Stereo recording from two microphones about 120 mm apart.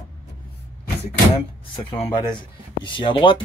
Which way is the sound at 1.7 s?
40° left (ahead or behind).